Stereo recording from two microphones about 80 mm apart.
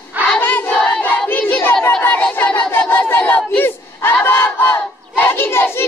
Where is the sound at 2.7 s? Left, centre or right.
Left.